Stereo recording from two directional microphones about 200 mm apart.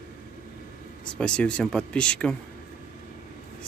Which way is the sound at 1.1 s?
5° left (ahead or behind).